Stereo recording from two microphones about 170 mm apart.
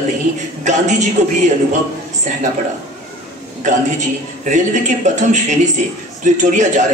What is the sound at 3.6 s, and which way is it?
A man's voice, 45° right (ahead or behind).